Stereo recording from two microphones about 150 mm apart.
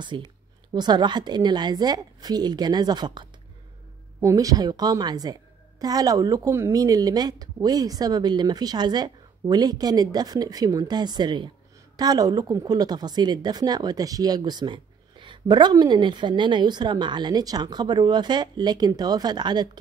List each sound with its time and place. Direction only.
0.0 s speech: 30° right (ahead or behind)